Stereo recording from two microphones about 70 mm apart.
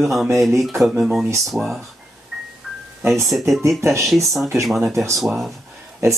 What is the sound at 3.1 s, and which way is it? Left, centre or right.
Speech, centre.